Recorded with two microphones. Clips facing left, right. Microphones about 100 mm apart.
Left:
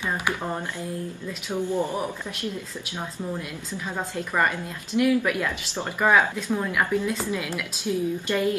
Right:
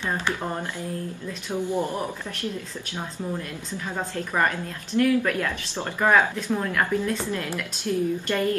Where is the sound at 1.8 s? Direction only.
15° left (ahead or behind).